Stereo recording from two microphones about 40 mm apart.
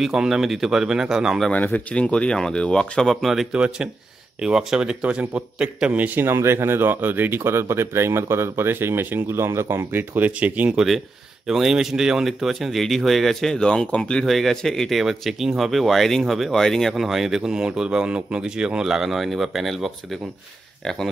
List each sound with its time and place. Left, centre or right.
0.2 s speech: centre
1.5 s speech: left
2.0 s speech: left
3.5 s a man's voice: right
6.1 s speech: right
10.3 s speech: right
11.4 s speech: centre
13.6 s speech: left
14.2 s speech: centre
14.9 s speech: centre
15.7 s speech: centre
16.5 s speech: centre
16.9 s a man's voice: centre